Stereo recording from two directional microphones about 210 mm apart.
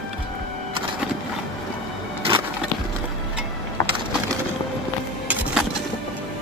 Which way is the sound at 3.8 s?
15° left (ahead or behind).